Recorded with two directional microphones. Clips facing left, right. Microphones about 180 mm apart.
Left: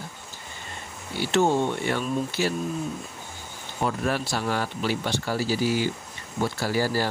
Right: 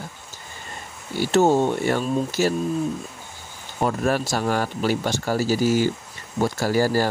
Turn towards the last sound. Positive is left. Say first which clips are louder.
# right 5 dB
turn(degrees=-45)  # may be behind; listen again after turning